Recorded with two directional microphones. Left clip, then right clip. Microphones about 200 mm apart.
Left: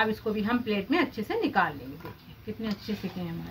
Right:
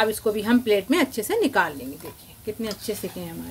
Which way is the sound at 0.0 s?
70° right (ahead or behind).